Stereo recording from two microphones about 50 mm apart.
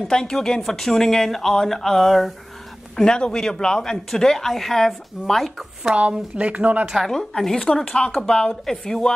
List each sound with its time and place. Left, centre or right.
0.1 s speech: centre
3.0 s speech: centre
6.1 s speech: right
7.1 s speech: centre